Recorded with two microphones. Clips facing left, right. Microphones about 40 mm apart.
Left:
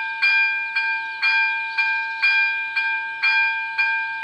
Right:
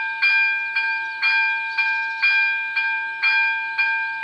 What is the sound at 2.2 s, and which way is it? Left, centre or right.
Train, centre.